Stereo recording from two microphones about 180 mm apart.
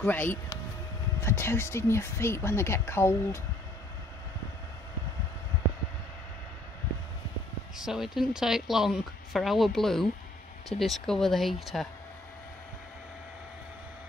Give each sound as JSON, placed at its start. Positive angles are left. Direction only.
{"t": 0.0, "sound": "speech", "side_deg": 10}
{"t": 7.7, "sound": "a woman's voice", "side_deg": -5}